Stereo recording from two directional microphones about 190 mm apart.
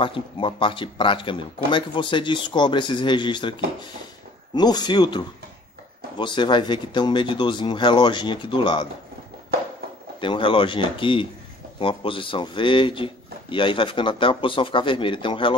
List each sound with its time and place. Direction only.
0.0 s speech: 25° left (ahead or behind)
10.2 s speech: 25° left (ahead or behind)